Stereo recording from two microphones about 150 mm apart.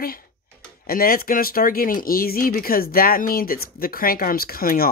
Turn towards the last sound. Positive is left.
turn(degrees=80)